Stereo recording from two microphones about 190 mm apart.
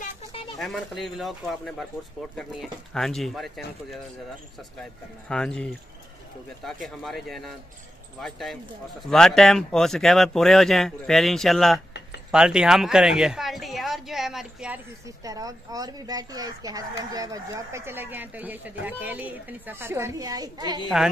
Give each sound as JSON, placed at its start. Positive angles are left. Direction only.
{"t": 0.6, "sound": "speech", "side_deg": 0}
{"t": 5.3, "sound": "speech", "side_deg": 5}
{"t": 15.0, "sound": "speech", "side_deg": -20}